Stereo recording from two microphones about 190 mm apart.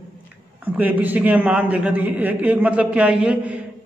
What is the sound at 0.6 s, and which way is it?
A man's voice, 10° right (ahead or behind).